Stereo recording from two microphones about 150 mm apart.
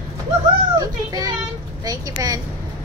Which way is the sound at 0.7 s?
25° right (ahead or behind).